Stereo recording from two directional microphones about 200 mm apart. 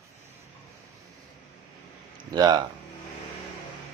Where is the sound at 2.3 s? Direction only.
20° right (ahead or behind).